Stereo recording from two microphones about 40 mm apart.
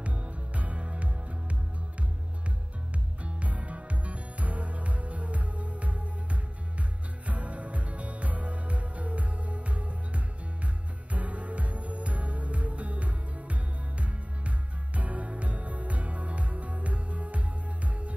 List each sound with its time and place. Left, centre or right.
0.0 s music: right
3.3 s music: right
7.2 s music: right